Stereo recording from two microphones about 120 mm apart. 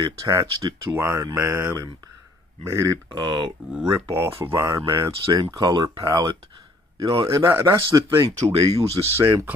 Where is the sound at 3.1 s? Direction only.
40° right (ahead or behind).